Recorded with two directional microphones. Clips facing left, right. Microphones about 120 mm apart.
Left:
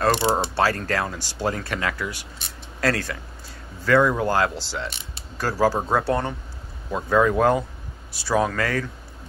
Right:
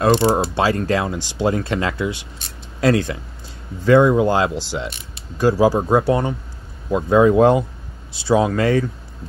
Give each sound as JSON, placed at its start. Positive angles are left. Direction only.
{"t": 0.6, "sound": "speech", "side_deg": -15}